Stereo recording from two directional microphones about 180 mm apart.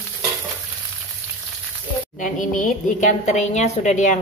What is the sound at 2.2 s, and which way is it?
A woman's voice, 45° left (ahead or behind).